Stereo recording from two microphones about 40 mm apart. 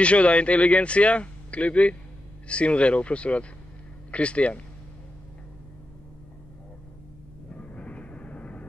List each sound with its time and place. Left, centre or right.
0.0 s a man's voice: left
7.5 s vehicle: left